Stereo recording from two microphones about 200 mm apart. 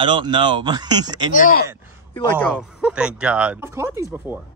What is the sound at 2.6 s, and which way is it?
Speech, 5° right (ahead or behind).